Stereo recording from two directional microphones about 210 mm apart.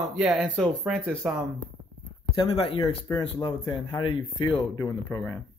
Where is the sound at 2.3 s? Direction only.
25° left (ahead or behind).